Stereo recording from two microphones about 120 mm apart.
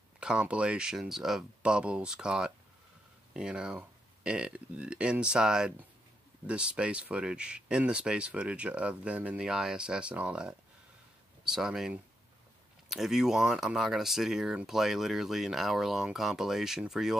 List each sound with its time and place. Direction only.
0.2 s speech: 10° right (ahead or behind)